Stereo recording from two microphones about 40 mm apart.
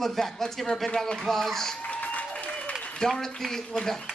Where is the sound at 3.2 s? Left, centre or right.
Centre.